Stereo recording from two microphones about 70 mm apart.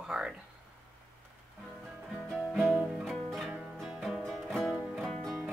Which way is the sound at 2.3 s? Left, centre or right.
Centre.